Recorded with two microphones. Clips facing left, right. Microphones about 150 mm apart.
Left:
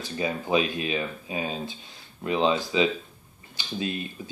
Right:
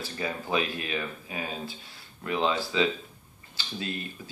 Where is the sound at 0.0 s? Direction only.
20° left (ahead or behind).